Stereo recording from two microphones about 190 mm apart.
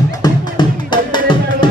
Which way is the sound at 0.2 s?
25° left (ahead or behind).